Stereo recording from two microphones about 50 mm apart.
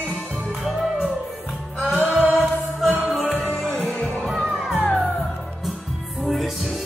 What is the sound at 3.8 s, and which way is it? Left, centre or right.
Music, left.